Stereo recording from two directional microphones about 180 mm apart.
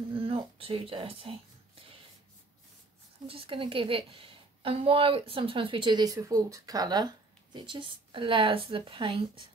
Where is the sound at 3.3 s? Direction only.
30° right (ahead or behind).